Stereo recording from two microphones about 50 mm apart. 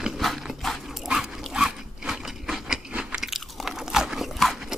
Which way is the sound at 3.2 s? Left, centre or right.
Centre.